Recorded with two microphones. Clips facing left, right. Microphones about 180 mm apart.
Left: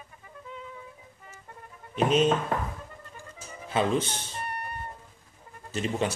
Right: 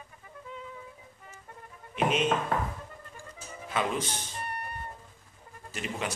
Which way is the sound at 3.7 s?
30° left (ahead or behind).